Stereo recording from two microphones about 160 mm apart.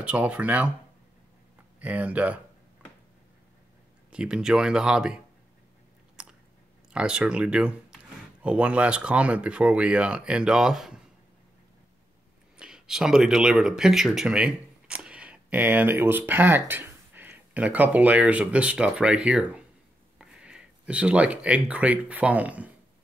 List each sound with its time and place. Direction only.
0.0 s speech: 10° right (ahead or behind)
1.8 s speech: 10° right (ahead or behind)
4.1 s speech: 5° right (ahead or behind)
6.2 s chewing: 5° right (ahead or behind)
6.9 s speech: 5° right (ahead or behind)
12.5 s speech: 5° right (ahead or behind)